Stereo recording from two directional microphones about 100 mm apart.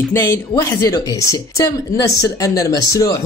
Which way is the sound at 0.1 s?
30° left (ahead or behind).